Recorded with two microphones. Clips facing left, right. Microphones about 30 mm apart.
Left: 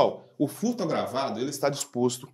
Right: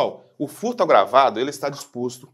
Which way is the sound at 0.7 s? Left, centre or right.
Right.